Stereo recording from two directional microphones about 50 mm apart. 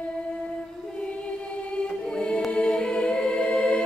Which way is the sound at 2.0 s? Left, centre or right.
Centre.